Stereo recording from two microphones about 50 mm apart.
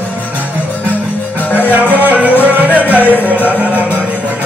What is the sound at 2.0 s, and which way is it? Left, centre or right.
Music, right.